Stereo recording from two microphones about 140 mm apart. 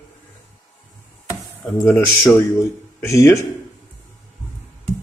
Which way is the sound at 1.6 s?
15° left (ahead or behind).